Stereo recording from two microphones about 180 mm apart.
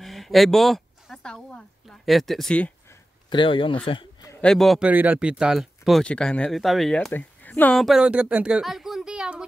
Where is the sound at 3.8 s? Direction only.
30° left (ahead or behind).